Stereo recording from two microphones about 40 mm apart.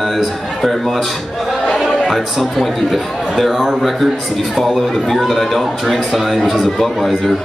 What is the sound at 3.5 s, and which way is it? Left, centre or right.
Speech, centre.